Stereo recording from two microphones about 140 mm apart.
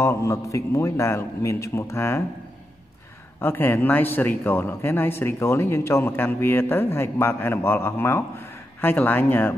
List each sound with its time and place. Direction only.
0.0 s a man's voice: 20° left (ahead or behind)
3.3 s speech: 15° left (ahead or behind)